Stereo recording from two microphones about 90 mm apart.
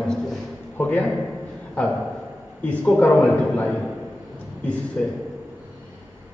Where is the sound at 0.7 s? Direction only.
20° left (ahead or behind).